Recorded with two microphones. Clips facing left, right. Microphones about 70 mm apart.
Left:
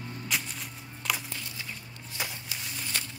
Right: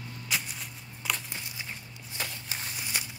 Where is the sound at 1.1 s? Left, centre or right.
Centre.